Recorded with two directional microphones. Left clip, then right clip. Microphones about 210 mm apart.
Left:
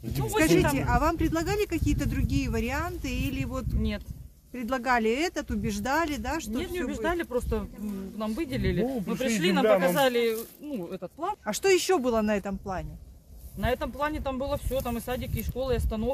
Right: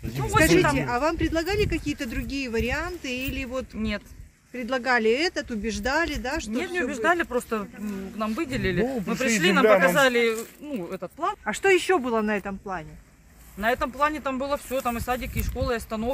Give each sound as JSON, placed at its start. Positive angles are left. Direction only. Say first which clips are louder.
{"t": 0.1, "sound": "a sound", "louder": "right 4 dB", "side_deg": 10}
{"t": 0.4, "sound": "speech", "louder": "right 4 dB", "side_deg": 50}
{"t": 6.6, "sound": "speech", "louder": "right 9 dB", "side_deg": 10}
{"t": 8.8, "sound": "speech", "louder": "right 3 dB", "side_deg": -15}
{"t": 9.4, "sound": "speech", "louder": "right 5 dB", "side_deg": 5}
{"t": 9.7, "sound": "speech", "louder": "right 4 dB", "side_deg": -20}
{"t": 9.9, "sound": "speech", "louder": "right 4 dB", "side_deg": 0}
{"t": 11.4, "sound": "speech", "louder": "right 3 dB", "side_deg": 60}
{"t": 13.6, "sound": "speech", "louder": "right 5 dB", "side_deg": 5}